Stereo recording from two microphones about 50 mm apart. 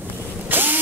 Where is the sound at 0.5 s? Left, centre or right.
Right.